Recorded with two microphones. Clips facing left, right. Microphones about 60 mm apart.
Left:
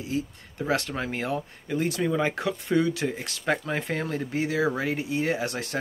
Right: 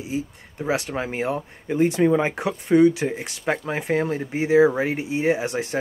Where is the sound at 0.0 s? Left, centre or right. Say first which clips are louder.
Right 2 dB; centre.